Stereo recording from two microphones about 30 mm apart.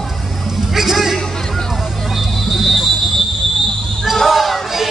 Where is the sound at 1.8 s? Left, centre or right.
Centre.